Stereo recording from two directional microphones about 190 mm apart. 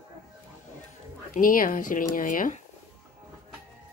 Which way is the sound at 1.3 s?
45° left (ahead or behind).